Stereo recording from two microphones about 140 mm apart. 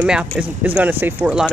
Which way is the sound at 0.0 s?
10° right (ahead or behind).